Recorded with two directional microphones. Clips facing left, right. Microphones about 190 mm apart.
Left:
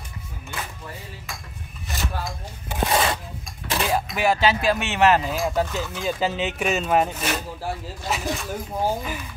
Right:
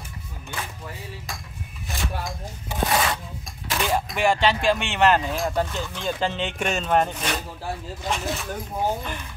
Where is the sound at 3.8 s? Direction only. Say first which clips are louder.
Even; 5° left (ahead or behind).